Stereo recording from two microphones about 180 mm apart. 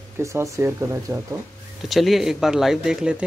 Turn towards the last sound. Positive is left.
turn(degrees=-5)  # may be behind; listen again after turning